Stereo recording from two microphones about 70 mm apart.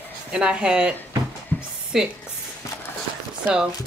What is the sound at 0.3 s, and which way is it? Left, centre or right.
Speech, centre.